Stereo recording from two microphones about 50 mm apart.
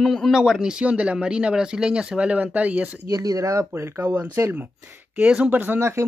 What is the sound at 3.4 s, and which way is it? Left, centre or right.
Speech, right.